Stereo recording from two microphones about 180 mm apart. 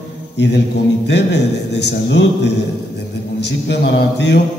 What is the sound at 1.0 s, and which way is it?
Speech, 70° left (ahead or behind).